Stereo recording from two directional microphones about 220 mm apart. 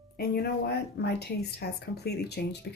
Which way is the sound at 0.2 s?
45° left (ahead or behind).